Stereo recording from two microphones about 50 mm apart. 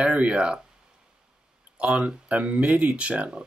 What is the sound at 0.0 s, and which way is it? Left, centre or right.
Speech, right.